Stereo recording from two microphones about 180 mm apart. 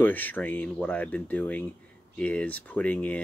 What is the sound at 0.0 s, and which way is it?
Speech, 10° left (ahead or behind).